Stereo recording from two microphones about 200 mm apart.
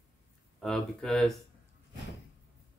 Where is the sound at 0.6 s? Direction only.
5° left (ahead or behind).